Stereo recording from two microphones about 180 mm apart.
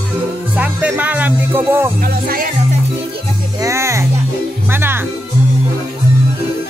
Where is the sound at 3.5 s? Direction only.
15° right (ahead or behind).